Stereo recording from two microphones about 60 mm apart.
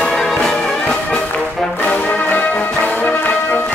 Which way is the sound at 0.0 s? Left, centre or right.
Centre.